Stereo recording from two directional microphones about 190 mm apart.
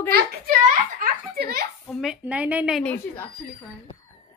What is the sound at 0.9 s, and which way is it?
Speech, 55° right (ahead or behind).